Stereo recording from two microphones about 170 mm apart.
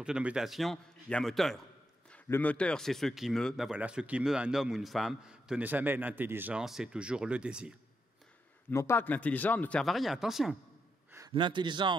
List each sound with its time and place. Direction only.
0.0 s speech: 5° right (ahead or behind)
8.6 s a man's voice: 15° left (ahead or behind)
11.1 s a sound: 15° right (ahead or behind)
11.3 s speech: 25° right (ahead or behind)